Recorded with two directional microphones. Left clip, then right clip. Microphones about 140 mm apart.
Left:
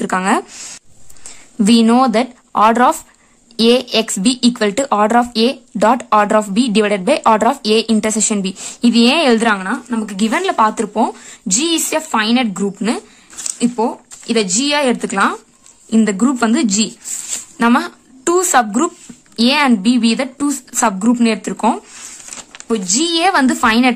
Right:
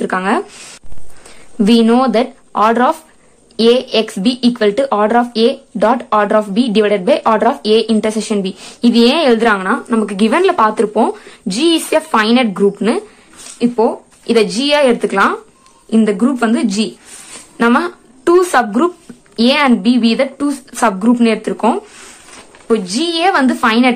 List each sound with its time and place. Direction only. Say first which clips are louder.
0.0 s speech: right 1 dB; 35° left (ahead or behind)